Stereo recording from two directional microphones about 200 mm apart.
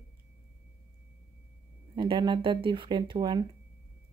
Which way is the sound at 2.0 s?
25° right (ahead or behind).